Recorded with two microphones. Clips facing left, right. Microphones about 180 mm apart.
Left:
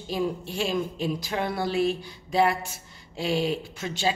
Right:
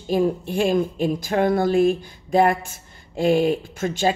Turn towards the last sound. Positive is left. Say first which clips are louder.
# right 6 dB
turn(degrees=-50)  # may be behind; listen again after turning